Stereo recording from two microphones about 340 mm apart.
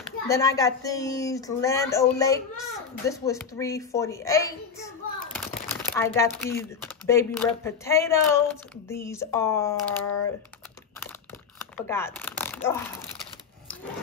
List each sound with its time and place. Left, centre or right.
0.3 s speech: centre
11.5 s a sound: centre
12.6 s speech: centre